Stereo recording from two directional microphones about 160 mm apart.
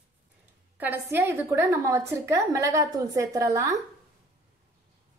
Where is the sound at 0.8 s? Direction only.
10° right (ahead or behind).